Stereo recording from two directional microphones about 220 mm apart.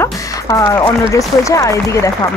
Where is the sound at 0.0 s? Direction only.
15° left (ahead or behind).